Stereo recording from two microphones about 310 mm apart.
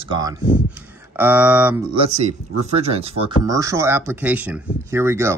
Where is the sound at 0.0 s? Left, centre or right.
Centre.